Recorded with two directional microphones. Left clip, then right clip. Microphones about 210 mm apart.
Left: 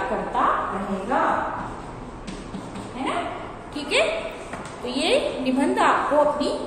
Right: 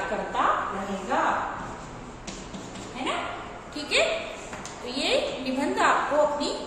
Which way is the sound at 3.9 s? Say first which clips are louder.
Left 2 dB; 20° left (ahead or behind).